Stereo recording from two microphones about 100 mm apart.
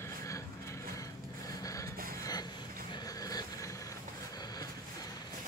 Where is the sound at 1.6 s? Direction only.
35° left (ahead or behind).